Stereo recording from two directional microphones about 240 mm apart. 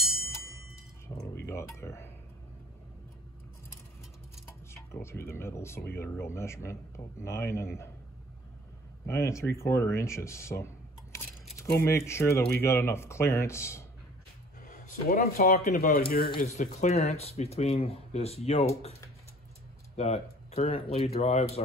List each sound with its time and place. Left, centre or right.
0.0 s music: left
1.1 s speech: centre
4.7 s speech: centre
9.0 s speech: centre
14.6 s speech: left
16.5 s speech: left
20.0 s speech: left